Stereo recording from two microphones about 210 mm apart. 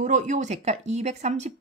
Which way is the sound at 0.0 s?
35° right (ahead or behind).